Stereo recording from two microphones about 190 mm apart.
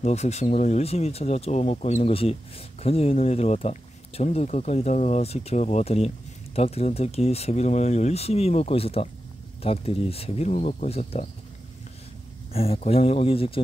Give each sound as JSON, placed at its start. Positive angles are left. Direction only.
{"t": 0.0, "sound": "speech", "side_deg": 35}
{"t": 12.5, "sound": "speech", "side_deg": 30}